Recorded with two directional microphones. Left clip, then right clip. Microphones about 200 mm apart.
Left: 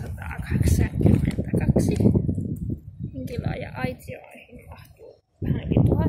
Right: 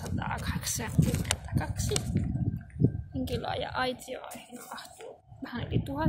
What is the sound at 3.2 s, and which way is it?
Speech, 10° right (ahead or behind).